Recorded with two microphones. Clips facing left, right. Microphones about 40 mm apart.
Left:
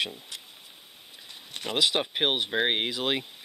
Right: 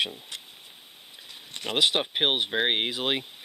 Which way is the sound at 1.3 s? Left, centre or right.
Centre.